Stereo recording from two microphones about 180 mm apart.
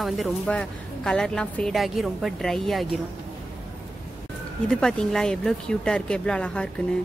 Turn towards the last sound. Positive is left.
turn(degrees=5)  # may be behind; listen again after turning